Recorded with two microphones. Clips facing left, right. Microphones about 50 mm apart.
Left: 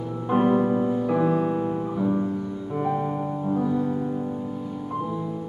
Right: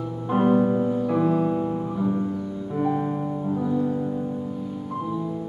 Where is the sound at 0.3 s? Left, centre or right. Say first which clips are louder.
Right 1 dB; centre.